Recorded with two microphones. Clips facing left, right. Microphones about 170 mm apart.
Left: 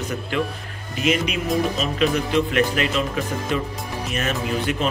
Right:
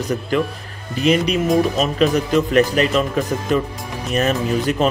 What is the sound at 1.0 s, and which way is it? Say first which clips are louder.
Speech: right 6 dB; 35° right (ahead or behind).